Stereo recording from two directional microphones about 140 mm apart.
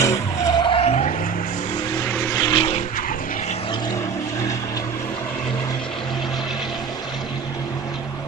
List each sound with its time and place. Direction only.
0.0 s skidding: 25° left (ahead or behind); by 1.1 s 50° left (ahead or behind)
2.3 s vehicle: 25° left (ahead or behind)